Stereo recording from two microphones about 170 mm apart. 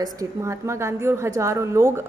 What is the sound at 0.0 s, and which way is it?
A woman's voice, 20° right (ahead or behind).